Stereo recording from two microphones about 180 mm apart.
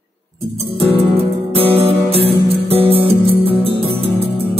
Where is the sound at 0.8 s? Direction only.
30° right (ahead or behind).